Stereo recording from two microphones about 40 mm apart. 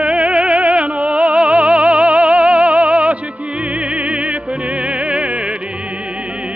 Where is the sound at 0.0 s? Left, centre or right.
Right.